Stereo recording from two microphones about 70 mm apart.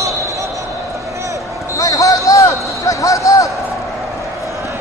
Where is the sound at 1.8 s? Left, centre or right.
Left.